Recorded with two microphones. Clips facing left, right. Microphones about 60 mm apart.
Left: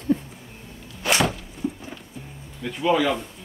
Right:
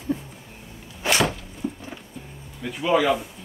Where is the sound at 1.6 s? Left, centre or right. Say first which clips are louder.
Left 2 dB; centre.